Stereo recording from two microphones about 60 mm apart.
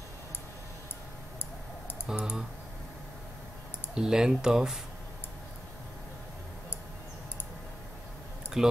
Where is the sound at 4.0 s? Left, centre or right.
Centre.